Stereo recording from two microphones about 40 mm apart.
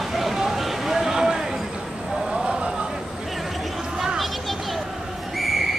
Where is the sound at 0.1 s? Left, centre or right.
Centre.